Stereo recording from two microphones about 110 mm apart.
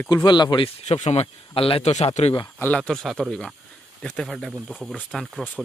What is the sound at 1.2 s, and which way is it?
Speech, 55° left (ahead or behind).